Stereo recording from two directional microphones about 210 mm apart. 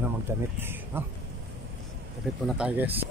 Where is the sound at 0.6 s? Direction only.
10° right (ahead or behind).